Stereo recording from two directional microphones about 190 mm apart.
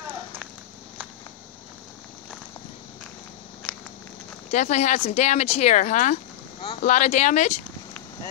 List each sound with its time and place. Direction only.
4.5 s speech: 35° left (ahead or behind)